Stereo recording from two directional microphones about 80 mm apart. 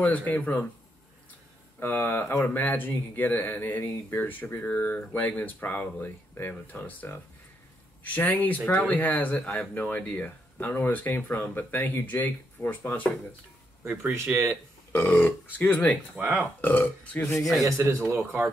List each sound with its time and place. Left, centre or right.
0.0 s speech: left
1.8 s speech: left
14.2 s speech: right
14.9 s speech: left
16.2 s speech: right
16.6 s speech: centre
17.6 s speech: right